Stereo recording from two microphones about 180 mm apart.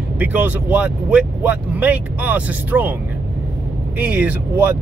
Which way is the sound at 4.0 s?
10° right (ahead or behind).